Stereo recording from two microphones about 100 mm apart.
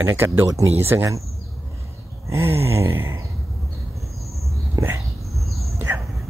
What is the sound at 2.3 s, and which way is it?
Speech, 25° right (ahead or behind).